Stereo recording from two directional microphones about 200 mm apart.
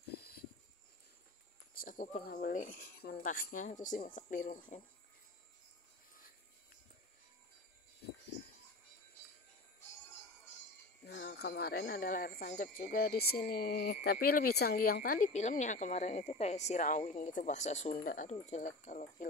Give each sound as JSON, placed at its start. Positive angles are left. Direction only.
{"t": 1.7, "sound": "speech", "side_deg": 45}
{"t": 11.1, "sound": "speech", "side_deg": 50}